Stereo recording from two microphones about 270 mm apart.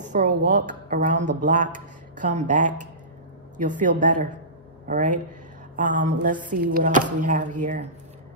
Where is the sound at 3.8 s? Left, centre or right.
Right.